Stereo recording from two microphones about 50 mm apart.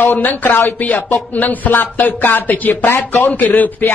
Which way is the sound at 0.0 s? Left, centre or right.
Left.